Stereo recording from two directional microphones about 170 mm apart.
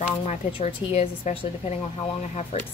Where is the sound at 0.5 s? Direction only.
30° left (ahead or behind).